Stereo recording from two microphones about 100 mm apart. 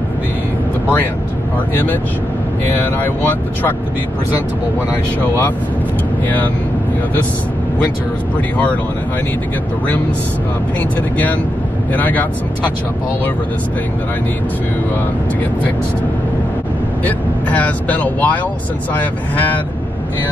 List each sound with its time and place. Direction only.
2.7 s speech: 20° left (ahead or behind)
6.2 s speech: 15° left (ahead or behind)
11.9 s speech: 15° left (ahead or behind)
17.0 s speech: 15° left (ahead or behind)